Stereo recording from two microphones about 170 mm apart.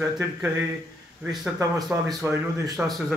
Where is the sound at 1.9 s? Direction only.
10° right (ahead or behind).